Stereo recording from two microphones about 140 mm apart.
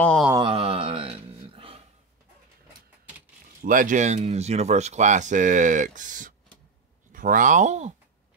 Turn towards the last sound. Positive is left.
turn(degrees=-55)  # may be behind; listen again after turning